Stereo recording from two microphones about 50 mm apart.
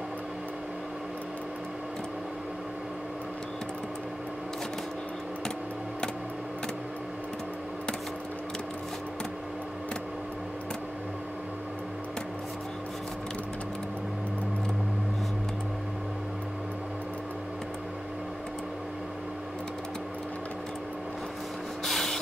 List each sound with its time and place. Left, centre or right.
21.8 s spray: centre